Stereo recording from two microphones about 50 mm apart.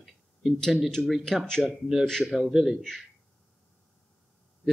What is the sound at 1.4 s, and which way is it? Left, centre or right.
A man's voice, centre.